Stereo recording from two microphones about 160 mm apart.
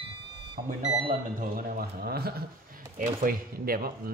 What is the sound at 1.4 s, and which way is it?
Speech, 60° right (ahead or behind).